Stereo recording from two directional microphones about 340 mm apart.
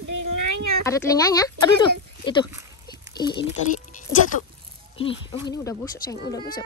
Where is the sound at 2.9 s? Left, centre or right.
Centre.